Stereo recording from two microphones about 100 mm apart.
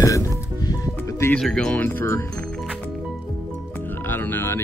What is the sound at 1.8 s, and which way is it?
Speech, 25° left (ahead or behind).